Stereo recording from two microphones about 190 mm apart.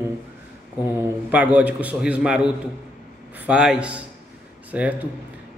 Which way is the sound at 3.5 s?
5° right (ahead or behind).